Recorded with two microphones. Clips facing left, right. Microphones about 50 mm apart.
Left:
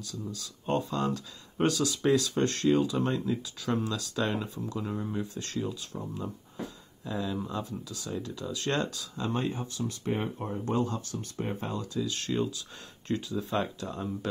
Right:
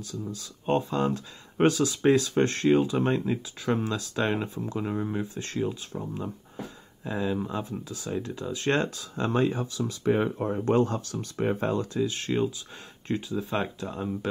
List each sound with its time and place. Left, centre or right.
0.0 s speech: right
7.1 s speech: right
9.3 s speech: right
10.6 s speech: right
11.8 s speech: right
12.1 s speech: right